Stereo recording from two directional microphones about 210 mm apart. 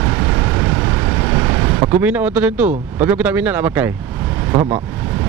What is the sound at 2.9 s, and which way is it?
Speech, 10° right (ahead or behind).